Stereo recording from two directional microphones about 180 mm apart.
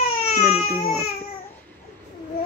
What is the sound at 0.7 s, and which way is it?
Speech, 5° left (ahead or behind).